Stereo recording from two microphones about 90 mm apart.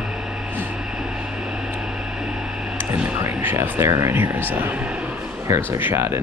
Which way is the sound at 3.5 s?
25° right (ahead or behind).